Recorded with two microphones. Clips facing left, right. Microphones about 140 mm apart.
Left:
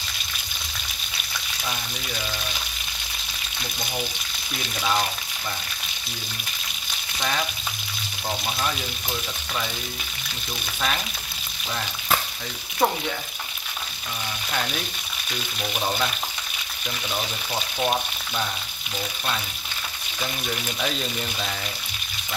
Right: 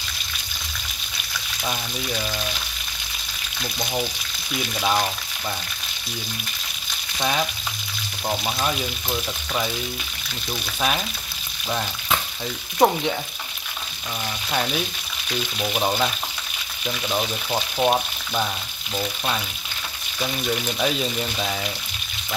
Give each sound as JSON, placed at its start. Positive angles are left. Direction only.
{"t": 7.2, "sound": "speech", "side_deg": -15}
{"t": 8.3, "sound": "frying", "side_deg": -20}
{"t": 12.8, "sound": "frying", "side_deg": -20}
{"t": 15.6, "sound": "frying", "side_deg": -20}
{"t": 17.1, "sound": "frying", "side_deg": -25}
{"t": 20.8, "sound": "speech", "side_deg": -10}